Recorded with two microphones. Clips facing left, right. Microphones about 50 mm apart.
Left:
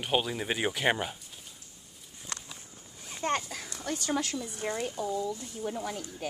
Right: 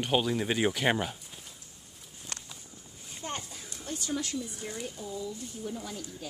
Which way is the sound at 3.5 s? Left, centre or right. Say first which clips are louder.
Left 4 dB; left.